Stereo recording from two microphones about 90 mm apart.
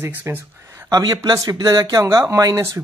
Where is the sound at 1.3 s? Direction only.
45° right (ahead or behind).